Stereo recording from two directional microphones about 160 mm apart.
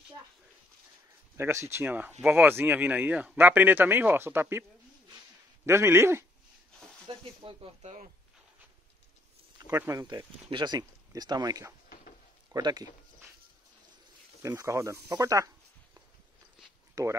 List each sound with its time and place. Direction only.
1.3 s speech: 15° right (ahead or behind)
5.7 s speech: 15° right (ahead or behind)
7.1 s speech: 35° right (ahead or behind)
9.7 s speech: 20° right (ahead or behind)
12.5 s a sound: 25° right (ahead or behind)
14.4 s speech: 20° right (ahead or behind)